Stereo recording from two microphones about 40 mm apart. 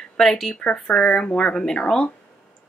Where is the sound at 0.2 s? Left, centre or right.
Centre.